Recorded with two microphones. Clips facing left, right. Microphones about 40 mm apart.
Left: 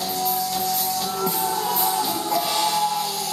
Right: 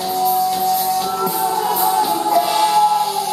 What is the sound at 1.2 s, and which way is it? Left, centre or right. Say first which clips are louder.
Music: right 6 dB; centre.